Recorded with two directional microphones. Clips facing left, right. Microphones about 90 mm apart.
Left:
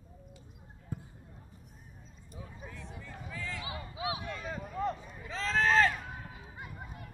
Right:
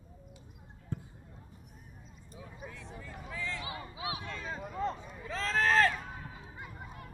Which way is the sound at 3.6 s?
25° left (ahead or behind).